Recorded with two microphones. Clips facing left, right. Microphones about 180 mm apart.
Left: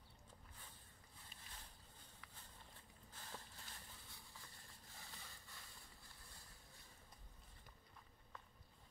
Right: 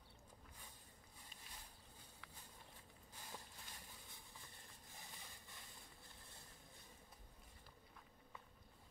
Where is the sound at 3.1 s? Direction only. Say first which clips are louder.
Even; 10° right (ahead or behind).